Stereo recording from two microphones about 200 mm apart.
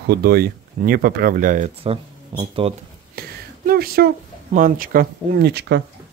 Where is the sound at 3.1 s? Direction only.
50° right (ahead or behind).